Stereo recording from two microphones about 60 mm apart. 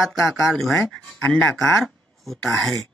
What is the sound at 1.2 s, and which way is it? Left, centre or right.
Speech, left.